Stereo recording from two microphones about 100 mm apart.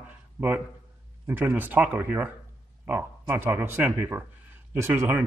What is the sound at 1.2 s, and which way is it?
A man's voice, 25° right (ahead or behind).